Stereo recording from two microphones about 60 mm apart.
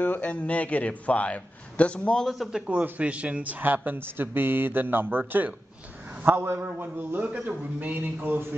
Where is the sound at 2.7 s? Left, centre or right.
Right.